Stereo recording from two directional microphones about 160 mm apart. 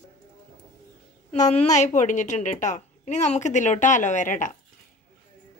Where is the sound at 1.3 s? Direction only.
45° left (ahead or behind).